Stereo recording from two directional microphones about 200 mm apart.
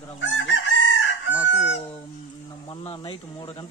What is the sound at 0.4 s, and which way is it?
Chicken, 70° left (ahead or behind).